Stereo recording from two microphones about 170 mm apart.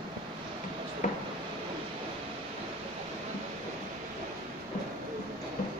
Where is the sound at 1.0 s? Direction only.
50° left (ahead or behind).